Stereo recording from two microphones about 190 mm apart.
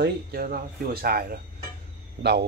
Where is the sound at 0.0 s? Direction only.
50° right (ahead or behind).